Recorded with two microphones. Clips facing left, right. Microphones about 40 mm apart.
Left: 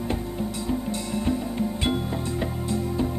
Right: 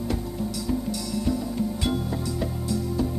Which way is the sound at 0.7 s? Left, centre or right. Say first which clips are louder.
Even; left.